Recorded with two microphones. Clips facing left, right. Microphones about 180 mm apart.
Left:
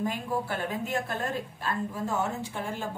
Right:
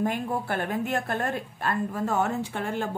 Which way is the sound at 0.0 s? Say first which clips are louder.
Right 3 dB; 60° right (ahead or behind).